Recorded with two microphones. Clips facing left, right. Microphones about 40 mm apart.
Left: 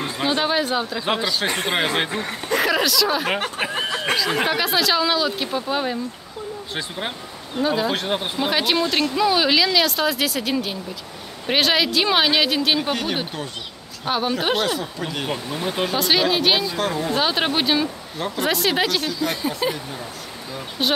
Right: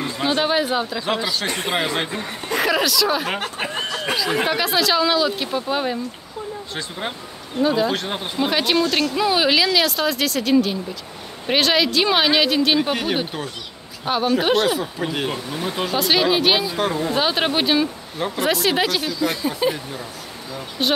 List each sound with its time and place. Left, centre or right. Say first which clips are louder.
0.2 s speech: right 1 dB; centre
1.5 s speech: left 1 dB; left
1.8 s speech: left 1 dB; left
2.5 s speech: even; centre
3.6 s snicker: left 1 dB; centre
3.9 s snicker: left 1 dB; left
4.3 s speech: even; centre
6.7 s speech: left 2 dB; centre
15.5 s speech: left 1 dB; centre
20.8 s speech: right 1 dB; centre